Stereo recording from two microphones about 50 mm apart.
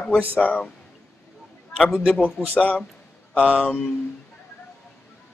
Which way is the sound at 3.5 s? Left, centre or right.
Left.